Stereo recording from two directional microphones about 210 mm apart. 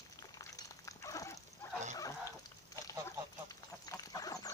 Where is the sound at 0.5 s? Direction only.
15° left (ahead or behind).